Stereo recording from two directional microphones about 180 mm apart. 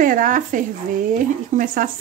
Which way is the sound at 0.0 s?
50° right (ahead or behind).